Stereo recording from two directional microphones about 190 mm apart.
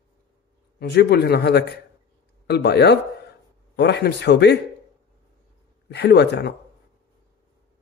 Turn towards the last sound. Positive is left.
turn(degrees=60)  # may be behind; listen again after turning